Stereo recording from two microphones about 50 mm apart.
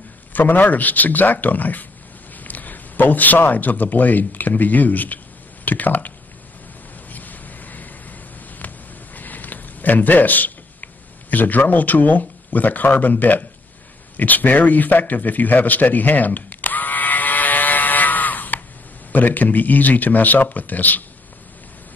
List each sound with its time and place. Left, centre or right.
0.3 s a man's voice: left
7.1 s a sound: left
19.1 s speech: left